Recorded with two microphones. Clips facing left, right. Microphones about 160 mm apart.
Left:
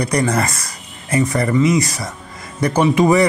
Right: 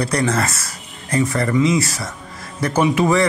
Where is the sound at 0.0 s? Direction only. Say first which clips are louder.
Left 1 dB; 15° left (ahead or behind).